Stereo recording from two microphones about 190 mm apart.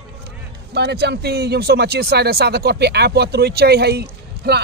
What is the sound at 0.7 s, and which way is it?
Speech, 60° right (ahead or behind).